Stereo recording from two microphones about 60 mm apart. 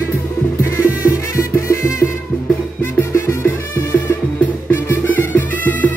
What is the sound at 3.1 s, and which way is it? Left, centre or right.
Music, left.